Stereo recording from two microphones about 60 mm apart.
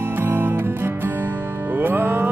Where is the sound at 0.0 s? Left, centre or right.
Right.